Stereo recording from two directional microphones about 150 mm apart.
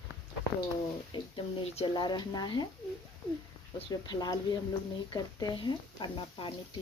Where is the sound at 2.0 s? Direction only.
30° left (ahead or behind).